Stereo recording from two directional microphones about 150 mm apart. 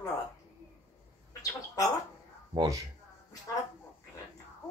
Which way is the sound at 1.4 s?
20° left (ahead or behind).